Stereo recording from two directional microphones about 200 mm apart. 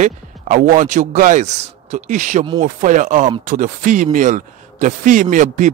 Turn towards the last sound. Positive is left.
turn(degrees=-40)  # may be behind; listen again after turning